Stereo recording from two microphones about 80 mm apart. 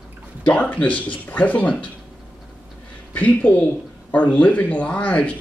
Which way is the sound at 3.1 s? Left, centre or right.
Centre.